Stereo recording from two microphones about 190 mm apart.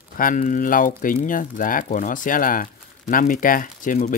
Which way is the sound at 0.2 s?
45° left (ahead or behind).